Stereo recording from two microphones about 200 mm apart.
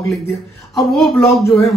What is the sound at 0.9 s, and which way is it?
Speech, centre (ahead or behind).